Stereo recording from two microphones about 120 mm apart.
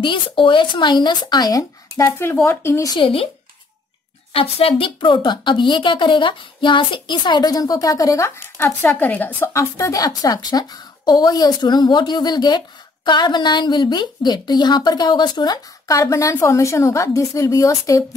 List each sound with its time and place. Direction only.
0.0 s a woman's voice: 45° left (ahead or behind); by 2.9 s 20° left (ahead or behind)
3.0 s speech: 50° left (ahead or behind)
4.3 s a woman's voice: 50° left (ahead or behind); by 18.0 s 30° left (ahead or behind)